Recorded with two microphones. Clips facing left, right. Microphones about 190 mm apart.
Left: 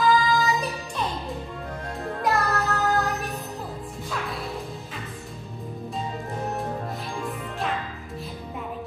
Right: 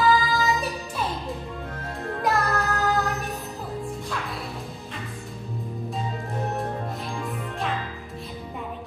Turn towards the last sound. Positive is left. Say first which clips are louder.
# even
turn(degrees=0)  # may be behind; listen again after turning